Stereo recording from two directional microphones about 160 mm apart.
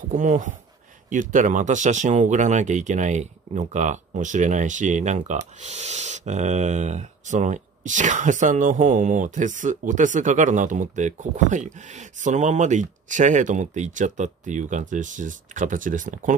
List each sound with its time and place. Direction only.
0.1 s speech: 55° right (ahead or behind)